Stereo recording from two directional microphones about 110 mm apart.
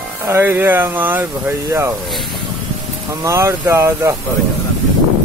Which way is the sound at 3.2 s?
25° right (ahead or behind).